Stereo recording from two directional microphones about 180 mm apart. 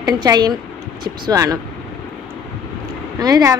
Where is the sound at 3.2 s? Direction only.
20° right (ahead or behind).